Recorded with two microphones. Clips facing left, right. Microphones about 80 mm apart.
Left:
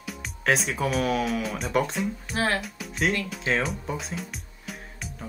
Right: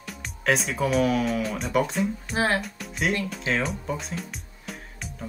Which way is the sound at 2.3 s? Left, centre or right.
Right.